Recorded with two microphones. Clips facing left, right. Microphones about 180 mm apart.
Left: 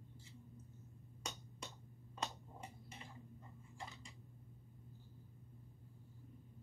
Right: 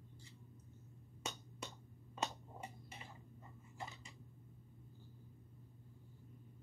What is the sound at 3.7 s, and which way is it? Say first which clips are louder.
Dishes: right 2 dB; 5° right (ahead or behind).